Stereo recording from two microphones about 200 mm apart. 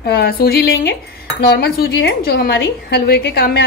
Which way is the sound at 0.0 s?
55° left (ahead or behind).